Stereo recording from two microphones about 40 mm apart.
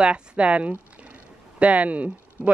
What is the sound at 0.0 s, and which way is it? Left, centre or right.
Speech, right.